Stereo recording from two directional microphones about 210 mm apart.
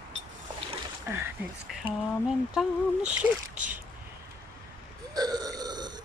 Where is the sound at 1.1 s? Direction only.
10° right (ahead or behind).